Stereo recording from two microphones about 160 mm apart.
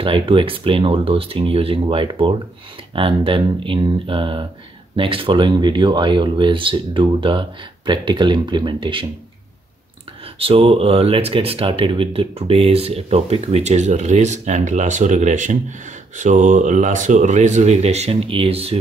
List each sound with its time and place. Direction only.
0.0 s speech: 35° right (ahead or behind)
10.4 s speech: 35° right (ahead or behind)